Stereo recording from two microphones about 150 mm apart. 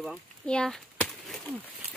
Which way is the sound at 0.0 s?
5° left (ahead or behind).